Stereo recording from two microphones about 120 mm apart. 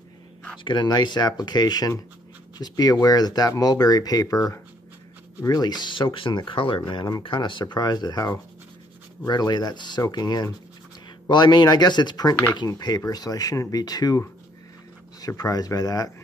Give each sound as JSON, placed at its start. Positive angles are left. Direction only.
{"t": 0.7, "sound": "speech", "side_deg": 35}